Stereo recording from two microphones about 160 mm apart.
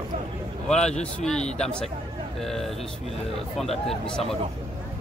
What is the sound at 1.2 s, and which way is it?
Speech, 5° left (ahead or behind).